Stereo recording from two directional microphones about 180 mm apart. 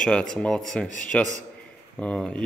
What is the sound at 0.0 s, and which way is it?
Speech, 5° left (ahead or behind).